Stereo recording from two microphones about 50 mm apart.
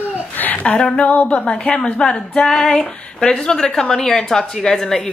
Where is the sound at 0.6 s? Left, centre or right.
Left.